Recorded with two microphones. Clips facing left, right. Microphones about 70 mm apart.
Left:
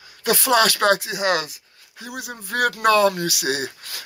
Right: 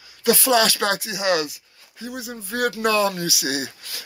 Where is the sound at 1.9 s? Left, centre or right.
Left.